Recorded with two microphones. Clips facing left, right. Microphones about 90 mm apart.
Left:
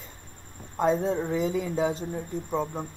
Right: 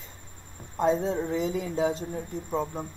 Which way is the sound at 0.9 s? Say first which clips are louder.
Left 2 dB; centre (ahead or behind).